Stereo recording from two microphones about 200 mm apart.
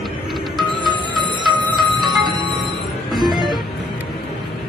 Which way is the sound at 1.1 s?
20° right (ahead or behind).